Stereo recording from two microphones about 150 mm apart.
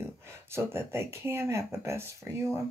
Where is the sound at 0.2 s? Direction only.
15° right (ahead or behind).